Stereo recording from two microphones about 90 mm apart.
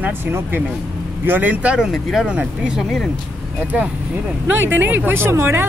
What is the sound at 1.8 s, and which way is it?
Speech, centre (ahead or behind).